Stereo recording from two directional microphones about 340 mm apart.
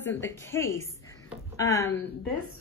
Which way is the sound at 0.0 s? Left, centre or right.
Centre.